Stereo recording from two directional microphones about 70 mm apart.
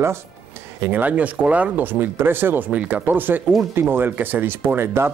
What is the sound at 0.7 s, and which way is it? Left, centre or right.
Speech, right.